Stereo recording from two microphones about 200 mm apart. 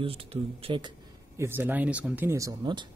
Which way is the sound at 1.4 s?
10° right (ahead or behind).